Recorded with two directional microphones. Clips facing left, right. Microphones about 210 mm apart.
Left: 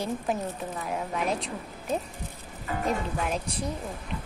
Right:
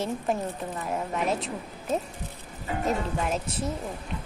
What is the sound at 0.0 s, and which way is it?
A woman's voice, centre (ahead or behind).